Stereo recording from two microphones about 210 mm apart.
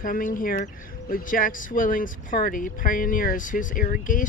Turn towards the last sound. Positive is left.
turn(degrees=40)  # may be behind; listen again after turning